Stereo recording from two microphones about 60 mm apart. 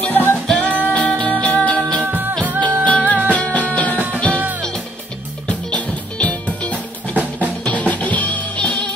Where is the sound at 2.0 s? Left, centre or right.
Right.